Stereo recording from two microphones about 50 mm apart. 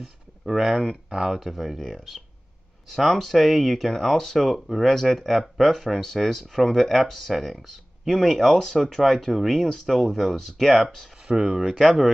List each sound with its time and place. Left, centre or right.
0.0 s speech: centre
11.2 s speech: centre
11.8 s speech: centre